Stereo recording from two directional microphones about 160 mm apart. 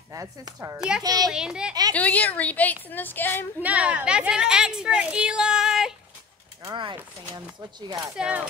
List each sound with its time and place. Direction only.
0.1 s speech: 20° right (ahead or behind)
1.3 s a woman's voice: 5° right (ahead or behind)
2.0 s a woman's voice: 10° left (ahead or behind)
3.6 s a woman's voice: 10° right (ahead or behind)
6.6 s speech: 30° right (ahead or behind)
8.2 s speech: 10° right (ahead or behind)